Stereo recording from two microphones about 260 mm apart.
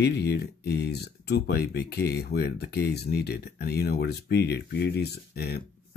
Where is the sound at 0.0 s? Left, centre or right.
Left.